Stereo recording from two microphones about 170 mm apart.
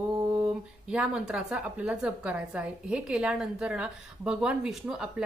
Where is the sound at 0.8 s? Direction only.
5° right (ahead or behind).